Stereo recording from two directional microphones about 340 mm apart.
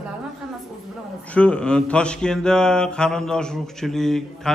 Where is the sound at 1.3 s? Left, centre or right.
Centre.